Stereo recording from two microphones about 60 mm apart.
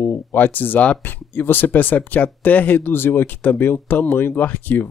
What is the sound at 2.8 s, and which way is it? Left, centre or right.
Speech, left.